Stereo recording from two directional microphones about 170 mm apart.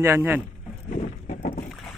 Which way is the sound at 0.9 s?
50° left (ahead or behind).